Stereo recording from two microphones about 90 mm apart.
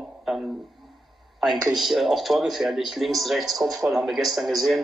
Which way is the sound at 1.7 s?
Centre (ahead or behind).